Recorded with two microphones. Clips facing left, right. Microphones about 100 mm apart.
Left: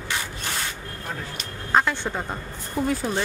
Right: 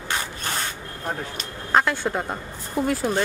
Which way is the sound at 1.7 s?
5° right (ahead or behind).